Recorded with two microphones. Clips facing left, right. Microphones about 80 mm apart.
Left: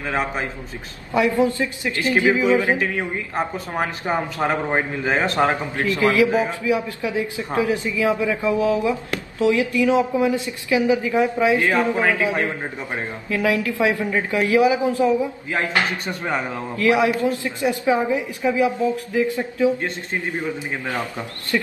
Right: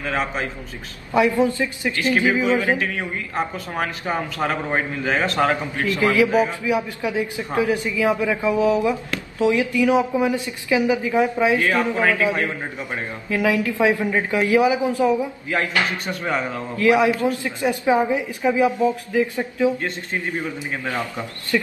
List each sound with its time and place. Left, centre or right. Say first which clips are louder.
0.0 s a man's voice: even; left
1.4 s a woman's voice: even; right
2.0 s a man's voice: left 1 dB; left
5.9 s a woman's voice: even; right
6.2 s a man's voice: right 1 dB; left
6.6 s a woman's voice: even; right
11.5 s a man's voice: left 1 dB; left
13.3 s a woman's voice: right 1 dB; right
15.5 s a man's voice: right 1 dB; left
16.7 s a woman's voice: right 1 dB; right
20.9 s a man's voice: even; left